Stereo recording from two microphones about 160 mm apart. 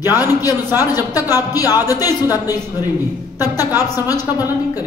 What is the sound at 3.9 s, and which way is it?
Speech, 25° left (ahead or behind).